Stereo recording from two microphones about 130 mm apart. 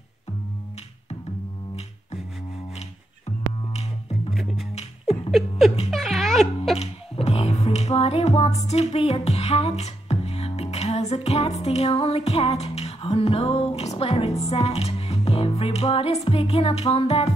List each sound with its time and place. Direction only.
4.3 s music: centre (ahead or behind)
4.7 s a sound: 50° left (ahead or behind)
5.9 s dog: centre (ahead or behind)
6.8 s music: 50° left (ahead or behind)